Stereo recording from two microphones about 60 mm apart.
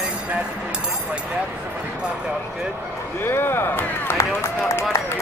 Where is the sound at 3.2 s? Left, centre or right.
Left.